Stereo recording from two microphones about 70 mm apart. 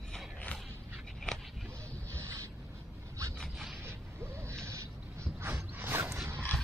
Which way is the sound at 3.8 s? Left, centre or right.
Right.